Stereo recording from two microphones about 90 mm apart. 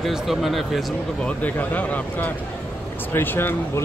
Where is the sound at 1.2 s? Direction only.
15° left (ahead or behind).